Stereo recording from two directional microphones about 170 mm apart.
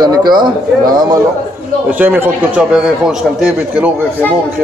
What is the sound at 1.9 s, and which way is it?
A man's voice, 10° right (ahead or behind).